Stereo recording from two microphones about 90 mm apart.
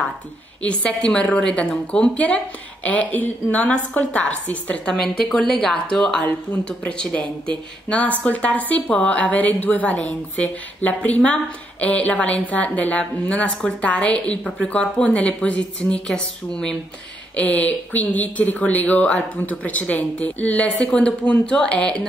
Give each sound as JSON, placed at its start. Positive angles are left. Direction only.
{"t": 0.6, "sound": "a woman's voice", "side_deg": 10}